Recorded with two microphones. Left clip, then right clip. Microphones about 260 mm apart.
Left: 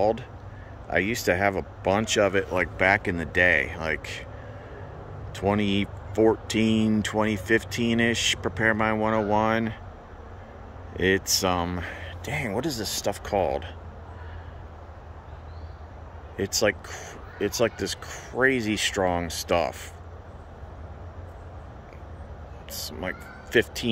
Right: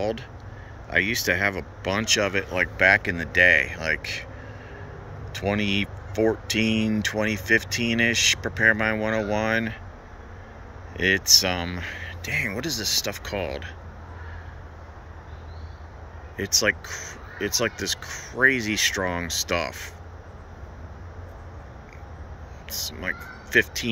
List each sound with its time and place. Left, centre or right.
0.8 s speech: centre
5.3 s speech: centre
10.9 s speech: centre
16.3 s speech: centre
22.7 s speech: centre